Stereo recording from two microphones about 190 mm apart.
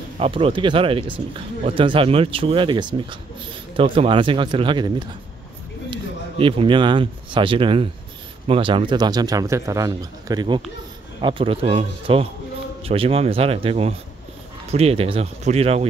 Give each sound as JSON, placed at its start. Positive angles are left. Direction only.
{"t": 0.2, "sound": "speech", "side_deg": -30}